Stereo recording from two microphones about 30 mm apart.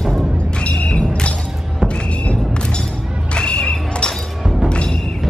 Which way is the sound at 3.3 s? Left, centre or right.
Left.